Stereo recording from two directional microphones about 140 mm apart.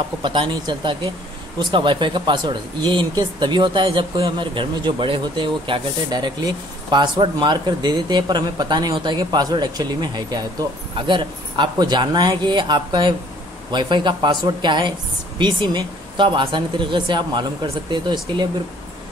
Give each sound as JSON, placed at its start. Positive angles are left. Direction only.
{"t": 0.2, "sound": "speech", "side_deg": -35}